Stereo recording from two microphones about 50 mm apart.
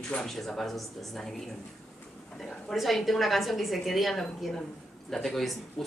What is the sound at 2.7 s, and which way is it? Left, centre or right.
A woman's voice, centre.